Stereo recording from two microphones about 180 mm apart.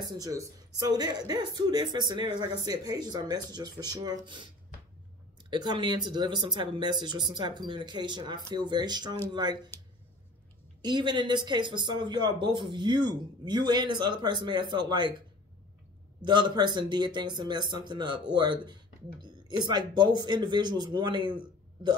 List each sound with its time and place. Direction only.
0.0 s speech: 20° right (ahead or behind)
5.5 s speech: 25° right (ahead or behind)
10.8 s speech: 25° right (ahead or behind)
16.2 s speech: 25° right (ahead or behind)